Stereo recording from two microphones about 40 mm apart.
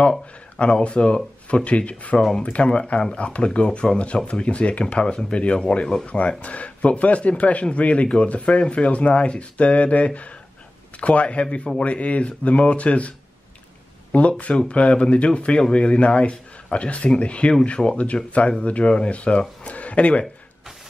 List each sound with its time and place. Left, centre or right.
0.0 s speech: left
2.1 s speech: left
6.0 s speech: left
14.1 s speech: left